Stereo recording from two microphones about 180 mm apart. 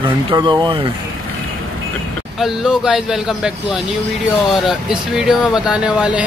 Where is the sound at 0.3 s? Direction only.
25° right (ahead or behind).